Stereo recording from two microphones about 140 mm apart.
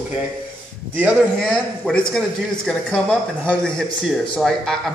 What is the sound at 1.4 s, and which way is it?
Speech, 5° left (ahead or behind).